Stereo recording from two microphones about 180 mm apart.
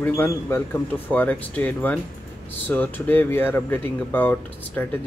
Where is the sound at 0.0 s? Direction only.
10° left (ahead or behind).